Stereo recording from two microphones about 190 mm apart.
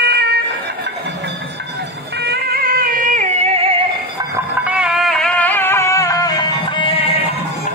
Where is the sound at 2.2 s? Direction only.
55° right (ahead or behind); by 3.7 s 35° right (ahead or behind).